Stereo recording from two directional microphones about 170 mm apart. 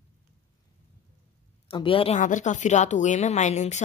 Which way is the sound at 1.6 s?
30° left (ahead or behind).